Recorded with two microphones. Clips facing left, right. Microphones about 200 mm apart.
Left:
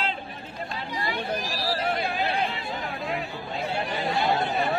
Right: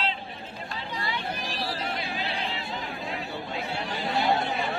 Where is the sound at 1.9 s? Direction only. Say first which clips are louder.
Left 6 dB; 55° left (ahead or behind).